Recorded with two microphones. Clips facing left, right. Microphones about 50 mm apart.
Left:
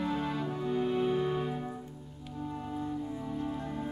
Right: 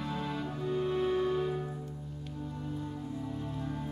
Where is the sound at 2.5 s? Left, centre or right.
Left.